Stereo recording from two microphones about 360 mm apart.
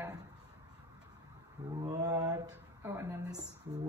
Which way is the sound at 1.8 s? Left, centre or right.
Centre.